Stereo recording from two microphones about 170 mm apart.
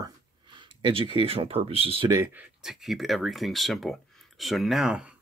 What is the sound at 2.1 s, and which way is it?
Speech, 15° right (ahead or behind).